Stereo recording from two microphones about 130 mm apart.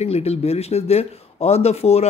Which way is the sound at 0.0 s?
55° left (ahead or behind).